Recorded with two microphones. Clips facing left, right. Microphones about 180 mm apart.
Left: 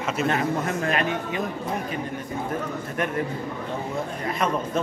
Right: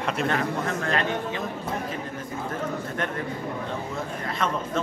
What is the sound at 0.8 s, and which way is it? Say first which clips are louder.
Speech: left 1 dB; 15° left (ahead or behind).